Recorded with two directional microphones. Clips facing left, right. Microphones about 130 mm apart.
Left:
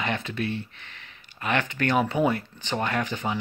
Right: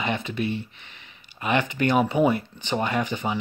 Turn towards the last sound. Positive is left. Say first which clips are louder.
# right 2 dB
turn(degrees=-5)  # may be behind; listen again after turning